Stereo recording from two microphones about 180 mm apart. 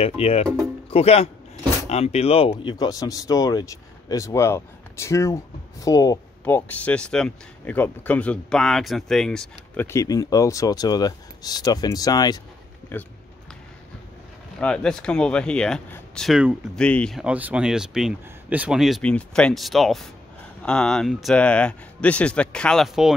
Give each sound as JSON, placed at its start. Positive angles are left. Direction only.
{"t": 0.0, "sound": "speech", "side_deg": 35}
{"t": 9.8, "sound": "speech", "side_deg": 20}
{"t": 12.9, "sound": "speech", "side_deg": 10}
{"t": 14.6, "sound": "speech", "side_deg": 5}